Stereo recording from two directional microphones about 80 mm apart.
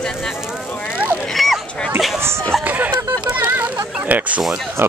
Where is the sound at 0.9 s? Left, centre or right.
Centre.